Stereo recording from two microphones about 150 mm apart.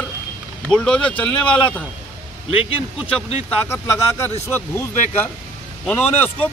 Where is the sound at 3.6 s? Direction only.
15° left (ahead or behind).